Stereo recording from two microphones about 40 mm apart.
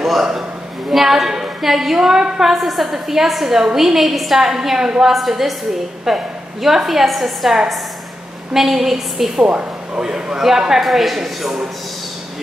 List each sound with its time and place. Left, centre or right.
0.0 s a man's voice: centre
2.5 s a woman's voice: centre
5.1 s a woman's voice: centre
8.5 s a woman's voice: centre
9.4 s speech: right
10.0 s a woman's voice: centre